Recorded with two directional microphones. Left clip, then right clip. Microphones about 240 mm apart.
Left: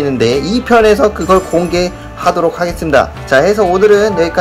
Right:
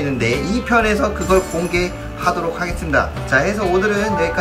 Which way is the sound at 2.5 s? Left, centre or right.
Left.